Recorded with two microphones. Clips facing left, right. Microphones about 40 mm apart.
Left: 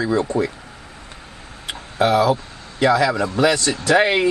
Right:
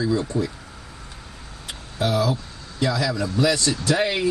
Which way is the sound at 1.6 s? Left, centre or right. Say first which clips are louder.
Left 7 dB; left.